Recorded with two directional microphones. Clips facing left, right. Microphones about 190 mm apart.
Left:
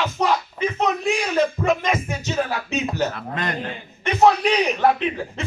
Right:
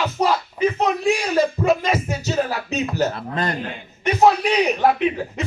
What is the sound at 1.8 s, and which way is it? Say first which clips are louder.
Speech: right 1 dB; 35° right (ahead or behind).